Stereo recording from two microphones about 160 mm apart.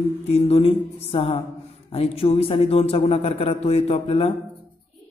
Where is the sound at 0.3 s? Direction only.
40° left (ahead or behind).